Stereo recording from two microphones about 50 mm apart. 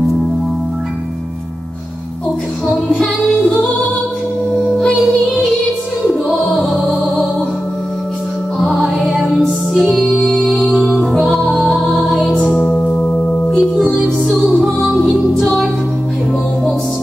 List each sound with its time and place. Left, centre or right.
6.0 s music: centre
8.5 s music: centre
11.5 s music: centre
12.5 s singing bowl: left
14.9 s music: centre